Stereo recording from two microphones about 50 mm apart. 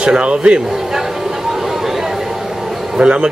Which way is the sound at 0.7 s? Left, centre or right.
Centre.